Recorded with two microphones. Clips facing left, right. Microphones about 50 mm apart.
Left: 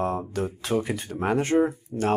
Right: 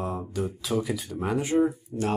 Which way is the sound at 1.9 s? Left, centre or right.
Left.